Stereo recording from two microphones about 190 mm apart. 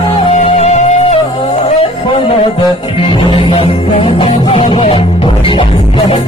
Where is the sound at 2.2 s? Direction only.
25° left (ahead or behind).